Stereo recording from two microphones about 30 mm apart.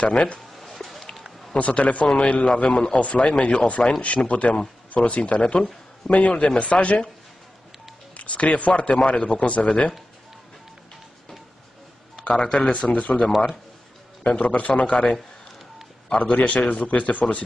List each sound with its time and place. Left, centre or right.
0.0 s speech: left
0.6 s music: centre
1.1 s run: centre
1.6 s a man's voice: left
5.4 s a man's voice: left
6.0 s speech: left
8.2 s speech: left
12.2 s a sound: left
12.4 s a man's voice: left
12.7 s speech: left
14.4 s speech: left
16.2 s speech: left